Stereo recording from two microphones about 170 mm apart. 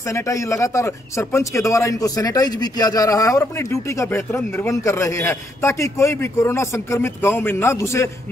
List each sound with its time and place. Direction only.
0.1 s a man's voice: 20° left (ahead or behind)